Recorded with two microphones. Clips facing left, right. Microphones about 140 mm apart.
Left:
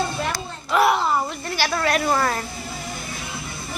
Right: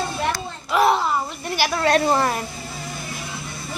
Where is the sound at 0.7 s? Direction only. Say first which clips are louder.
Even; 25° right (ahead or behind).